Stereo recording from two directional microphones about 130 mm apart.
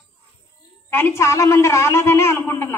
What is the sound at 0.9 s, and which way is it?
A woman's voice, 20° left (ahead or behind).